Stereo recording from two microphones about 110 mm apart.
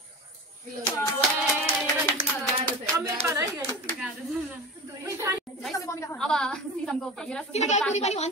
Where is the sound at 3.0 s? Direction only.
25° right (ahead or behind).